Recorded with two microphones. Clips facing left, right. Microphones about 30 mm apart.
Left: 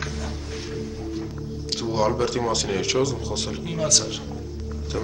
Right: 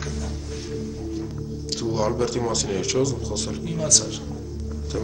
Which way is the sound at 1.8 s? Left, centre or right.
Centre.